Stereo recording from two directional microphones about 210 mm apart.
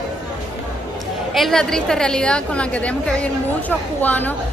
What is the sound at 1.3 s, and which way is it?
A woman's voice, centre (ahead or behind).